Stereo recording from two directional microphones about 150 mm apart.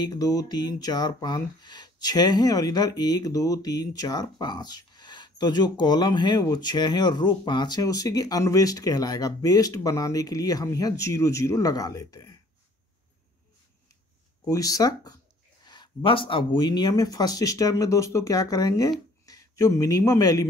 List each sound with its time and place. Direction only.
0.0 s speech: 25° left (ahead or behind)
14.5 s speech: 25° left (ahead or behind)